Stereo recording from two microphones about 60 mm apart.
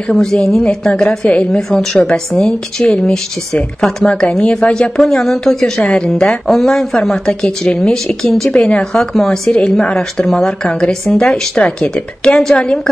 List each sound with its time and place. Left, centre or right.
0.1 s a woman's voice: centre
5.0 s a woman's voice: centre
8.5 s a woman's voice: centre